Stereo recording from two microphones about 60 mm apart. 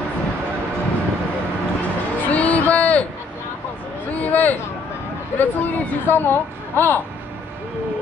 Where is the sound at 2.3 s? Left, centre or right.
Left.